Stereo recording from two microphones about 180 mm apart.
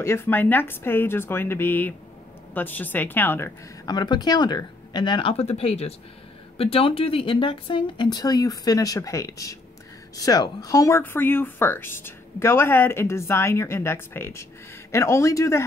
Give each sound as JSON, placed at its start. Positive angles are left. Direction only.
{"t": 0.0, "sound": "a woman's voice", "side_deg": 15}